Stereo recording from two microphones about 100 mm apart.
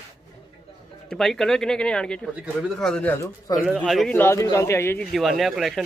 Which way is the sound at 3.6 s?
15° right (ahead or behind).